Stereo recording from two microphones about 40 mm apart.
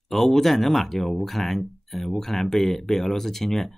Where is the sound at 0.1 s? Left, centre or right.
Centre.